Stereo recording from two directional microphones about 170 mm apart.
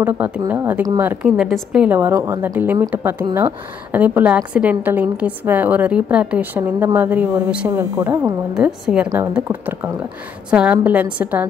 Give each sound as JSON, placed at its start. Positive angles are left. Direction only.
{"t": 0.5, "sound": "a woman's voice", "side_deg": -10}
{"t": 3.2, "sound": "speech", "side_deg": -25}
{"t": 3.9, "sound": "a woman's voice", "side_deg": -10}